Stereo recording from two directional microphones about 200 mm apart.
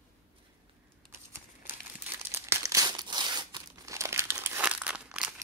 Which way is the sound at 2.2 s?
10° right (ahead or behind).